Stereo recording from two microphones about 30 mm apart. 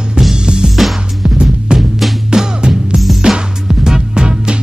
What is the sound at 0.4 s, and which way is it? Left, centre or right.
Music, right.